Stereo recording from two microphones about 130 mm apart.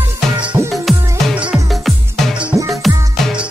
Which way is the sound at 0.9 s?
Centre (ahead or behind).